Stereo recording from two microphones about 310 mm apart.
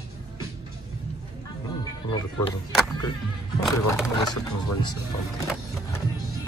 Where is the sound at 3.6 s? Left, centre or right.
Centre.